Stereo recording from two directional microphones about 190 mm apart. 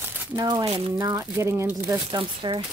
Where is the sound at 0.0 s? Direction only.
20° right (ahead or behind).